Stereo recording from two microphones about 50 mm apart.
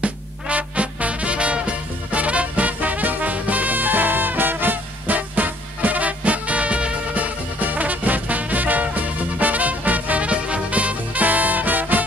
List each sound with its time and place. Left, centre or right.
0.0 s music: right